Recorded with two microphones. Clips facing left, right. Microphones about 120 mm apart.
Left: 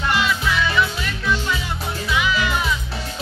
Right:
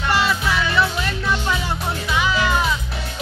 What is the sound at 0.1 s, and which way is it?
Music, 35° right (ahead or behind).